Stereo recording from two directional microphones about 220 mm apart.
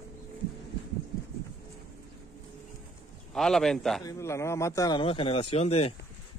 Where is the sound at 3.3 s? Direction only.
Centre (ahead or behind).